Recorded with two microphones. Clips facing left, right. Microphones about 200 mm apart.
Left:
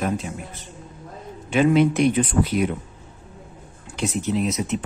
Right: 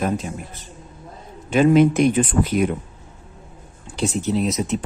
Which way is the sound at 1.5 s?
45° right (ahead or behind).